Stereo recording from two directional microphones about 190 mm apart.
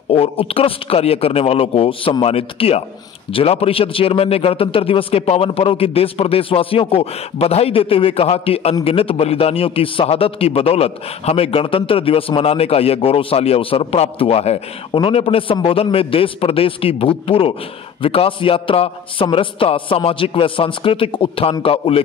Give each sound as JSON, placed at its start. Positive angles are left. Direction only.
{"t": 0.1, "sound": "a man's voice", "side_deg": 30}